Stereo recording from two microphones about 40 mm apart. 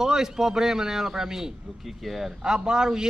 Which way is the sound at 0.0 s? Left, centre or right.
Centre.